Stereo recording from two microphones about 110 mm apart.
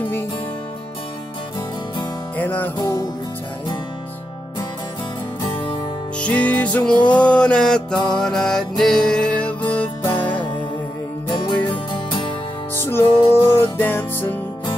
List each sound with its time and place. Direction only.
2.3 s music: 15° left (ahead or behind)
2.8 s music: 35° left (ahead or behind)
6.1 s music: 10° left (ahead or behind)
6.9 s music: 45° left (ahead or behind)
7.2 s a sound: 10° left (ahead or behind)
7.9 s music: 40° left (ahead or behind)
8.2 s music: 5° left (ahead or behind)
10.0 s music: 45° left (ahead or behind)
12.7 s music: 20° left (ahead or behind)